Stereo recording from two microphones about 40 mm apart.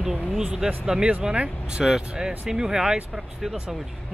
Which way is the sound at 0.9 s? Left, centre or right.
Right.